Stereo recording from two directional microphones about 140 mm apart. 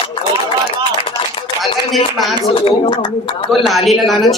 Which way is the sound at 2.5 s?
40° left (ahead or behind).